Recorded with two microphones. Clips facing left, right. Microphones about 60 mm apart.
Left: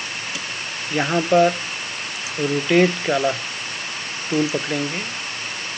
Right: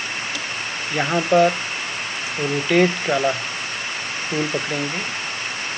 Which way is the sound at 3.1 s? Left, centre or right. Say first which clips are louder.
Even; right.